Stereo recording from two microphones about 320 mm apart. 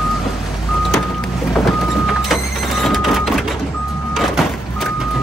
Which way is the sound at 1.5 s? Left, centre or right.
Centre.